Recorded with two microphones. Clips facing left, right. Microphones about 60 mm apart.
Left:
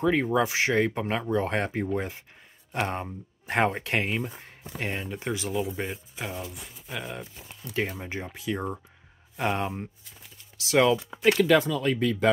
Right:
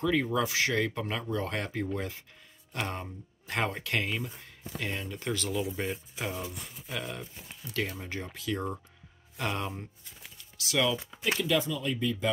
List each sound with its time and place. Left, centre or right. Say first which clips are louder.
0.0 s speech: left 4 dB; left
5.3 s speech: left 2 dB; centre
6.1 s speech: even; centre
8.0 s speech: left 3 dB; left
10.3 s typing: left 7 dB; left
11.3 s speech: left 4 dB; left